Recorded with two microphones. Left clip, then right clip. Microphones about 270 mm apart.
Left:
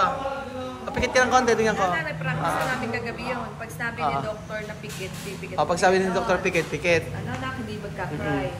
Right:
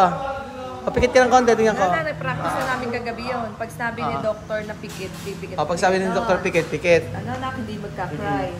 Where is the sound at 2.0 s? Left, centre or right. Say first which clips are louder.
Right 3 dB; right.